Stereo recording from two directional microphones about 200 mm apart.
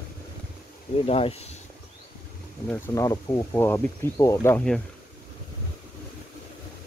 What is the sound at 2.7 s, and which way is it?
Speech, 15° left (ahead or behind).